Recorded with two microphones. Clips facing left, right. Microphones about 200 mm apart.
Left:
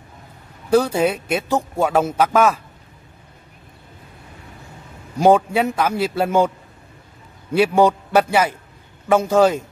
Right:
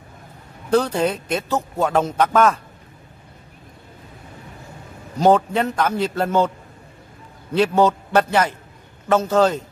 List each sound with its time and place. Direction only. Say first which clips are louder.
0.7 s speech: left 2 dB; 10° left (ahead or behind)
5.2 s speech: left 1 dB; 10° left (ahead or behind)
7.5 s speech: left 2 dB; 10° left (ahead or behind)